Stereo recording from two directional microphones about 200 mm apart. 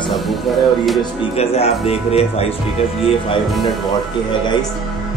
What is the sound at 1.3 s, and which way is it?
Speech, 30° left (ahead or behind).